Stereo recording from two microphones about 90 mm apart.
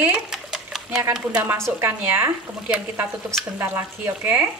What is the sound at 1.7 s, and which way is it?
Speech, 25° right (ahead or behind).